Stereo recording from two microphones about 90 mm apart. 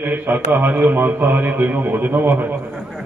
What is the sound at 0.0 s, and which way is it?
A man's voice, 20° right (ahead or behind).